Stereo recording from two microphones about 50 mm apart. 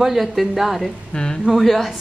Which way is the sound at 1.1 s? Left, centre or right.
Centre.